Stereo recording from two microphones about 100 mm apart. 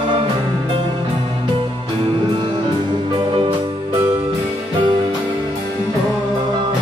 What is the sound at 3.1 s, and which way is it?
Music, 60° right (ahead or behind).